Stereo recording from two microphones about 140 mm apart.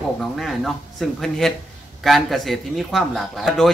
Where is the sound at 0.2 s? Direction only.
Centre (ahead or behind).